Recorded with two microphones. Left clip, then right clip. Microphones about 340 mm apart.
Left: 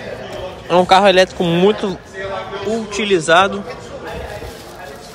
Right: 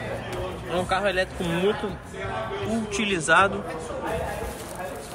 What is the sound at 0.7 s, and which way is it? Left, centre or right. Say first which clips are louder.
Speech: left 15 dB; centre.